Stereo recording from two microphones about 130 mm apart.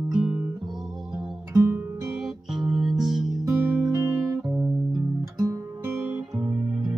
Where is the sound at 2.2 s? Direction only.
5° right (ahead or behind).